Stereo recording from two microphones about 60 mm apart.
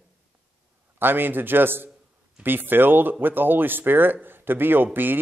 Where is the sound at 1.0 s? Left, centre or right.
Right.